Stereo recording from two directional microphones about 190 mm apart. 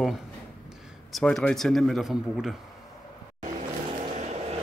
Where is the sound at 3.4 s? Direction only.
35° right (ahead or behind).